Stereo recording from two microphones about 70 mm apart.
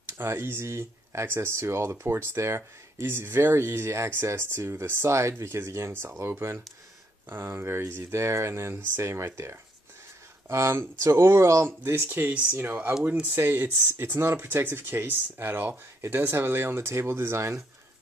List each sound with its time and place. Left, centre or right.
0.2 s speech: right